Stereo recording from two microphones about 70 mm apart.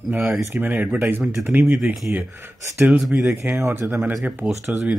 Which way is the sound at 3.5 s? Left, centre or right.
Right.